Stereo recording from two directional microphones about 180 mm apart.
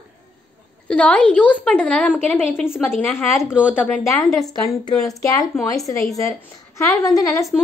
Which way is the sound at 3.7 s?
10° left (ahead or behind).